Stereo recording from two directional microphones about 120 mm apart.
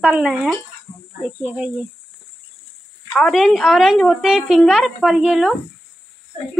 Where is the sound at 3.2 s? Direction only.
Centre (ahead or behind).